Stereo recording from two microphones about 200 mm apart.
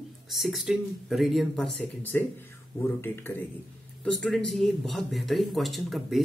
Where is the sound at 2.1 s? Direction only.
10° left (ahead or behind).